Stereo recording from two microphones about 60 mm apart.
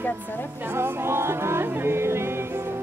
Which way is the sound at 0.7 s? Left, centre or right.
Right.